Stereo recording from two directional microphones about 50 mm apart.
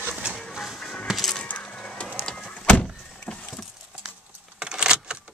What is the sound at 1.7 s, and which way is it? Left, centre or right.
Music, centre.